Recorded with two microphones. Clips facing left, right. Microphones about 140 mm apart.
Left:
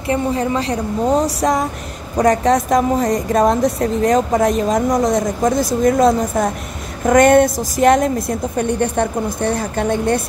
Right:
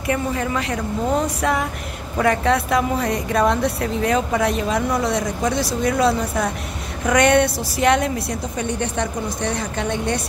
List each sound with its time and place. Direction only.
0.0 s a woman's voice: 30° left (ahead or behind); by 10.2 s 45° left (ahead or behind)